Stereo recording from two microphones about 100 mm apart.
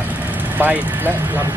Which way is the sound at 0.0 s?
15° right (ahead or behind).